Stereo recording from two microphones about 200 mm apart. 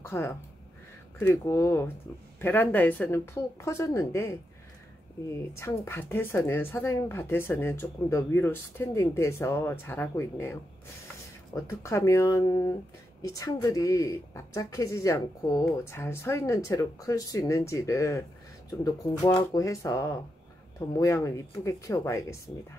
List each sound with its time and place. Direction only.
0.0 s speech: 10° left (ahead or behind)
5.5 s speech: 15° left (ahead or behind)